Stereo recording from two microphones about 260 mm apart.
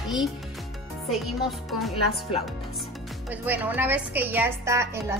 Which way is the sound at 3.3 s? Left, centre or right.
Centre.